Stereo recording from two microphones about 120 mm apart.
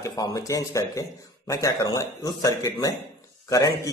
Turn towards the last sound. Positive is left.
turn(degrees=25)  # may be behind; listen again after turning